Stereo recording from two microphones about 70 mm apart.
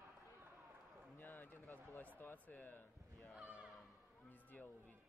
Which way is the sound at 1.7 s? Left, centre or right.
Left.